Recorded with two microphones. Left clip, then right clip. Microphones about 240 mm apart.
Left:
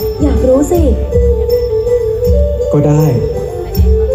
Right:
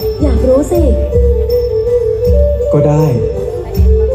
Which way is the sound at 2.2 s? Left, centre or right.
Left.